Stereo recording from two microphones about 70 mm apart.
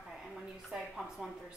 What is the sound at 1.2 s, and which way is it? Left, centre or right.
Speech, centre.